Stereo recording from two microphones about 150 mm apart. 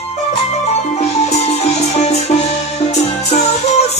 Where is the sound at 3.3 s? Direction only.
45° left (ahead or behind).